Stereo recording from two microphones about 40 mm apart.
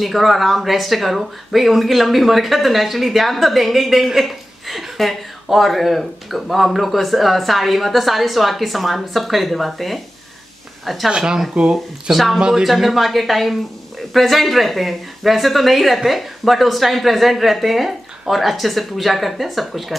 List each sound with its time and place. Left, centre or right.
0.0 s speech: centre
11.1 s speech: right
12.6 s speech: centre